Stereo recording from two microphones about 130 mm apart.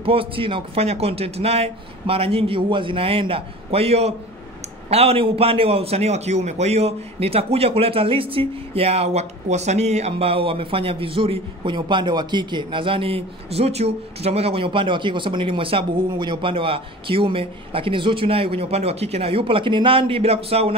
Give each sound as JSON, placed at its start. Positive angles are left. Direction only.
{"t": 0.0, "sound": "a man's voice", "side_deg": -45}